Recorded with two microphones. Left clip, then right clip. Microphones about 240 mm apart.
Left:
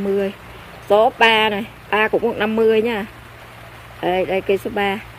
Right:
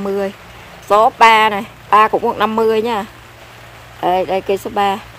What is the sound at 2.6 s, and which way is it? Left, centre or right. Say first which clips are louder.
Speech: left 1 dB; right.